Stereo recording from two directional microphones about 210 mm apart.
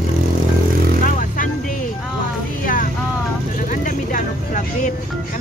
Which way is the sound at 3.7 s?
40° left (ahead or behind).